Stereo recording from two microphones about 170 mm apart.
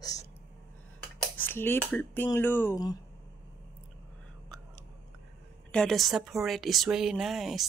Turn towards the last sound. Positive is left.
turn(degrees=0)  # may be behind; listen again after turning